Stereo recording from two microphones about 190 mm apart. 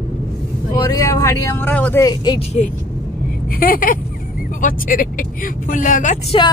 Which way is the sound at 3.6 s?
50° left (ahead or behind).